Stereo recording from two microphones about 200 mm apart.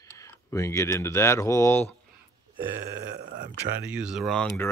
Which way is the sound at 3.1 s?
40° right (ahead or behind).